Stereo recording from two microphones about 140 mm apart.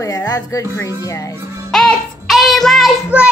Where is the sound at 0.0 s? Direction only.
25° left (ahead or behind).